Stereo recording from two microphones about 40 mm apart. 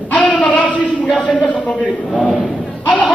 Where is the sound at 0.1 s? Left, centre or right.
Left.